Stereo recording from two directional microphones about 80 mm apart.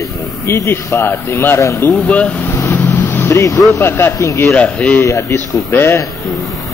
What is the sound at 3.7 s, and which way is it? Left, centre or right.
Speech, left.